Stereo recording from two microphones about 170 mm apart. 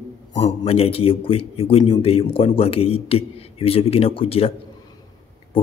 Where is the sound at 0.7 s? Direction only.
35° left (ahead or behind).